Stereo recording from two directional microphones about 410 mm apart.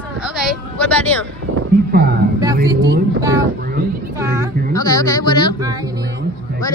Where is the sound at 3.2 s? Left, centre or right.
Centre.